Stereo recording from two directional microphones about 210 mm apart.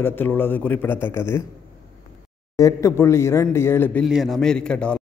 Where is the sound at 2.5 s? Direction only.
15° left (ahead or behind).